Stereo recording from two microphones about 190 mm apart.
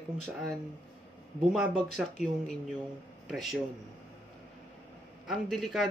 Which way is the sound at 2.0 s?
5° right (ahead or behind).